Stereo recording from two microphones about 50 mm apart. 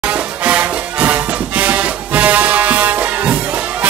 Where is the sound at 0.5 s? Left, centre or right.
Right.